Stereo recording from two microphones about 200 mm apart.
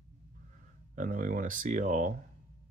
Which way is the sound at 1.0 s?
40° right (ahead or behind).